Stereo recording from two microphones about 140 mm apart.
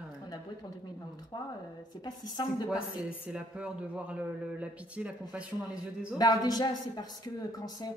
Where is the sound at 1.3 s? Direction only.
30° left (ahead or behind).